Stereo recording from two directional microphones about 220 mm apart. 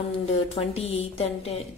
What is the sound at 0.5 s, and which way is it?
A woman's voice, 25° left (ahead or behind).